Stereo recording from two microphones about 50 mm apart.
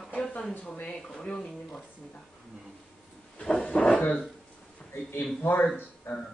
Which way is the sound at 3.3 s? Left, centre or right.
Left.